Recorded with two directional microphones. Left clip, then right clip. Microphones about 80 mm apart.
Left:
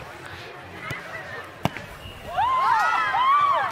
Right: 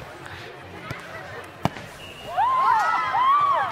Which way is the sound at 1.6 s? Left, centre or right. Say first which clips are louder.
Right 1 dB; centre.